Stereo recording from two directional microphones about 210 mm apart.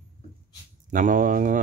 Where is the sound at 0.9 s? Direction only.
40° right (ahead or behind).